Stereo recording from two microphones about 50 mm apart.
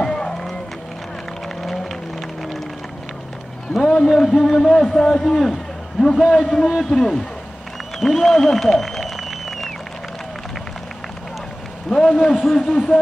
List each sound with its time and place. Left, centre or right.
0.0 s music: centre
3.8 s a sound: centre
4.6 s a man's voice: centre
6.1 s a man's voice: centre
8.2 s applause: centre
11.9 s a man's voice: centre